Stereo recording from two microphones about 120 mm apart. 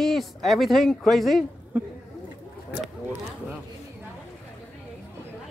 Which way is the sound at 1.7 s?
15° right (ahead or behind).